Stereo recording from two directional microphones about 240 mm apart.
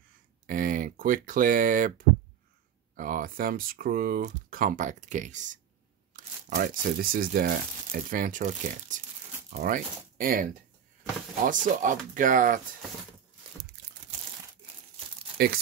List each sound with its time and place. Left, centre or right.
0.5 s speech: right
15.3 s speech: right